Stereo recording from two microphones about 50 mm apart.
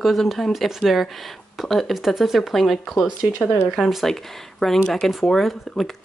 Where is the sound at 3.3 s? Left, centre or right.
Left.